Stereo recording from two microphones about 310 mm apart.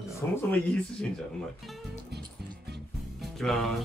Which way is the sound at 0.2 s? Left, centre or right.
Centre.